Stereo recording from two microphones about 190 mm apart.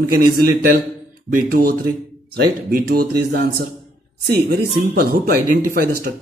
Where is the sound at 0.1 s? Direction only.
55° right (ahead or behind).